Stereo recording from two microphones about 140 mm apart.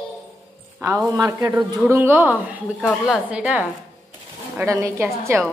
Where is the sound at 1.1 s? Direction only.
25° right (ahead or behind).